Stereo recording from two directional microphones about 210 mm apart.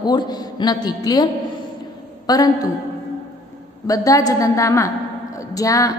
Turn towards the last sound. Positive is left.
turn(degrees=15)  # may be behind; listen again after turning